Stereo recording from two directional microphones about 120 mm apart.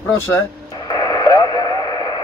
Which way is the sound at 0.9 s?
30° left (ahead or behind).